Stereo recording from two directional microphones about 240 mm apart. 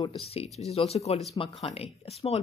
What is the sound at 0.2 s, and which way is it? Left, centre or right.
Speech, left.